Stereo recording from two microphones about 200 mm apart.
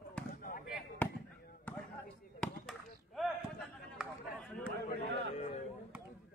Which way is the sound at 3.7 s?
Centre (ahead or behind).